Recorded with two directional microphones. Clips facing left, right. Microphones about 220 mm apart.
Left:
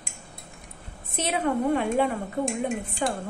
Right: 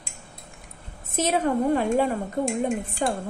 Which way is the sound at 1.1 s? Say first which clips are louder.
Right 3 dB; 45° right (ahead or behind).